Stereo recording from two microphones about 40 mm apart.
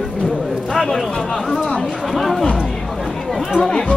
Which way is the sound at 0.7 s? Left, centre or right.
Centre.